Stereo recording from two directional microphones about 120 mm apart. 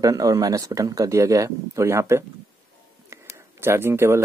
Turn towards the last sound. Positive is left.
turn(degrees=-20)  # may be behind; listen again after turning